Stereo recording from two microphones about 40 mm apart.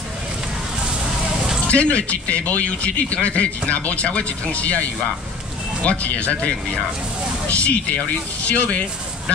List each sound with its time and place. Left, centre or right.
1.7 s speech: left
5.9 s speech: left